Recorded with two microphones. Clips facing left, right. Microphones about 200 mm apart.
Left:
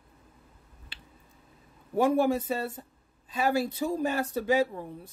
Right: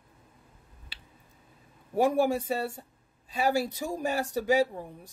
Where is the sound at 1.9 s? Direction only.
10° right (ahead or behind).